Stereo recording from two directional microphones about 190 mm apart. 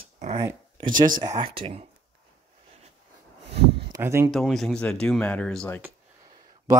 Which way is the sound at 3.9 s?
15° right (ahead or behind).